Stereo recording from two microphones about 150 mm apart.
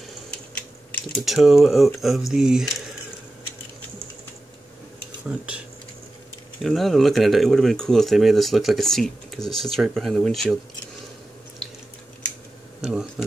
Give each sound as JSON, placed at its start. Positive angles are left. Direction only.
{"t": 1.2, "sound": "speech", "side_deg": 0}
{"t": 6.6, "sound": "speech", "side_deg": 0}
{"t": 12.8, "sound": "speech", "side_deg": -5}